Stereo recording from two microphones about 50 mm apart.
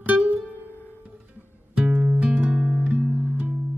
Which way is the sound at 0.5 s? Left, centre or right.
Left.